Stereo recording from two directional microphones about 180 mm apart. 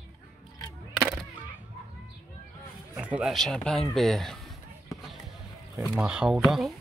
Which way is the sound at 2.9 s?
10° right (ahead or behind).